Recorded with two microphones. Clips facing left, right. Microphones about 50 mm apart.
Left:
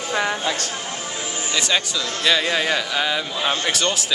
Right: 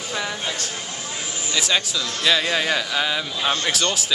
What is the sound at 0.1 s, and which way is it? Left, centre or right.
Speech, left.